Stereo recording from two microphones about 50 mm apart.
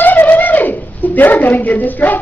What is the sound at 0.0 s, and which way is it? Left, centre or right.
Speech, left.